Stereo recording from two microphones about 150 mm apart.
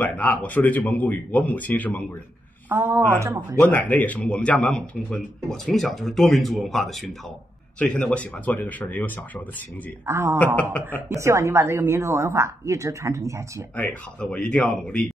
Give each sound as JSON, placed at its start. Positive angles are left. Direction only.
{"t": 0.0, "sound": "speech", "side_deg": 10}
{"t": 2.7, "sound": "speech", "side_deg": -15}
{"t": 3.6, "sound": "speech", "side_deg": 10}
{"t": 10.0, "sound": "speech", "side_deg": -15}
{"t": 10.4, "sound": "speech", "side_deg": 10}
{"t": 11.1, "sound": "a woman's voice", "side_deg": -20}
{"t": 13.7, "sound": "speech", "side_deg": 10}